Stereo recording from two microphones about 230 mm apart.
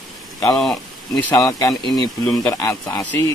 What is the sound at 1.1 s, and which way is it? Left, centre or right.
Speech, centre.